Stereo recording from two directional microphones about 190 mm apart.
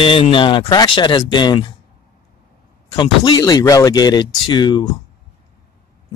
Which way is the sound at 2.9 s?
20° left (ahead or behind).